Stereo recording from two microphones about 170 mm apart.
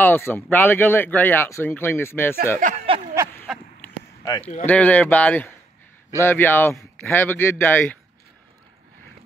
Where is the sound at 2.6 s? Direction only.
50° right (ahead or behind).